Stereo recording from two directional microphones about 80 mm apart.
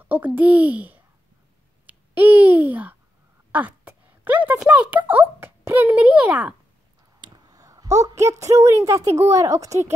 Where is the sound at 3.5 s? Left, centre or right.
Right.